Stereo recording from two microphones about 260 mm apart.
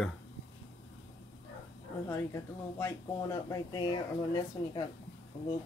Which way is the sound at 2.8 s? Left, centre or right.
Centre.